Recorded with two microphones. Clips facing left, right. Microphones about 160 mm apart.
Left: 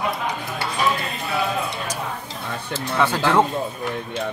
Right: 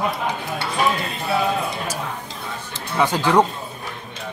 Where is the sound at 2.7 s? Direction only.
15° right (ahead or behind).